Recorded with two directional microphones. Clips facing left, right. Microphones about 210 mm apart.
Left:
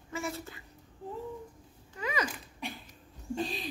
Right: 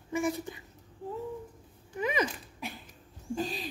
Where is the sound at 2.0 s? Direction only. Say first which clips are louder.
Right 4 dB; 20° right (ahead or behind).